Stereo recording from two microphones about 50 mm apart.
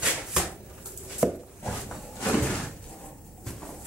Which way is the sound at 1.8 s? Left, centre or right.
Centre.